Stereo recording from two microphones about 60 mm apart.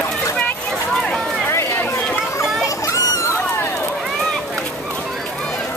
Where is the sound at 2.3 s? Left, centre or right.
Left.